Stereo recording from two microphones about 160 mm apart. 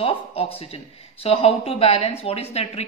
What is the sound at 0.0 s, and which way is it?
A woman's voice, 35° left (ahead or behind).